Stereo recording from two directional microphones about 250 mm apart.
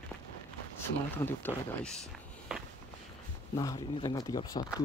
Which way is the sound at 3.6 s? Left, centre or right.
Centre.